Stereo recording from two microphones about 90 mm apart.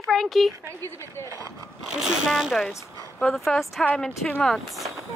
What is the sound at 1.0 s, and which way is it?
Speech, 30° left (ahead or behind).